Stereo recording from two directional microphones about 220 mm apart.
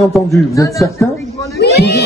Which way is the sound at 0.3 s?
15° left (ahead or behind).